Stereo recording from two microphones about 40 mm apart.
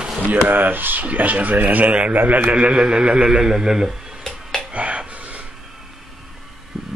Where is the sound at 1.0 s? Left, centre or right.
Right.